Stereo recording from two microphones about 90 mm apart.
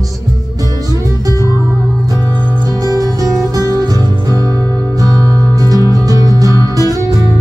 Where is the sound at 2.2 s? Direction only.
20° left (ahead or behind).